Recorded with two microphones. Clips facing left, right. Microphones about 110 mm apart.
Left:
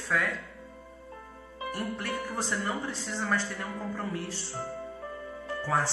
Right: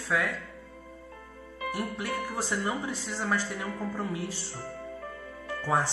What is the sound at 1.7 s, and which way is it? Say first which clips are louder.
Speech: right 1 dB; 5° right (ahead or behind).